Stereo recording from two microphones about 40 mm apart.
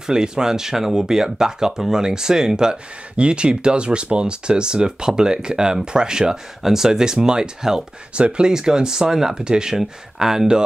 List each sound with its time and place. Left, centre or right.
0.0 s speech: centre